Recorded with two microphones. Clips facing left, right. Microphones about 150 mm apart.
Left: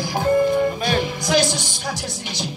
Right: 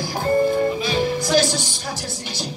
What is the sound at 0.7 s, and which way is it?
Music, 50° left (ahead or behind).